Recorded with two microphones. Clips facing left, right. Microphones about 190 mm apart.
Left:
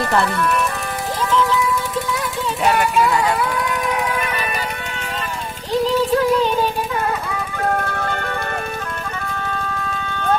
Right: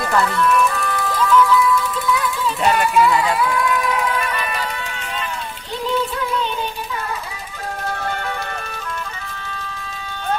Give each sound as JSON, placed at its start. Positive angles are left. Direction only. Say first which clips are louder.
{"t": 0.1, "sound": "speech", "louder": "right 3 dB", "side_deg": 35}
{"t": 1.0, "sound": "music", "louder": "right 3 dB", "side_deg": 25}
{"t": 7.6, "sound": "vehicle", "louder": "left 4 dB", "side_deg": 55}